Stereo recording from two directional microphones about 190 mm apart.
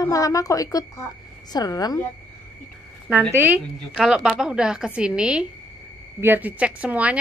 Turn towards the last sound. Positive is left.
turn(degrees=-5)  # may be behind; listen again after turning